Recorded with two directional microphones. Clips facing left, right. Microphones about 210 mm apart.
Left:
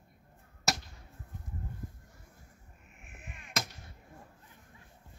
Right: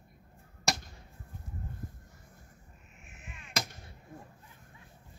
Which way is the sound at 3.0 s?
55° left (ahead or behind).